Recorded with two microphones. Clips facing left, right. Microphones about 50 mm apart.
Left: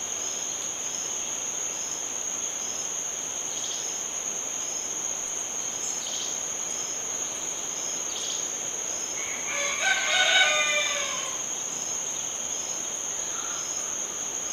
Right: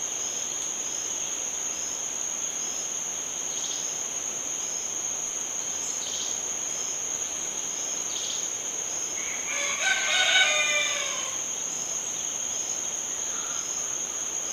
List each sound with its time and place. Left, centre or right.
9.6 s crowing: centre